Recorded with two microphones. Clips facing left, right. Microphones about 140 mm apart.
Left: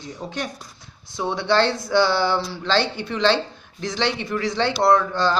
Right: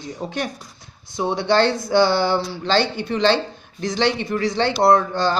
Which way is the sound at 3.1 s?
45° right (ahead or behind).